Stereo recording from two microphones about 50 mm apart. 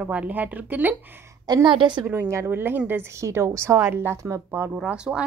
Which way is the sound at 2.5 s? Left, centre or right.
Right.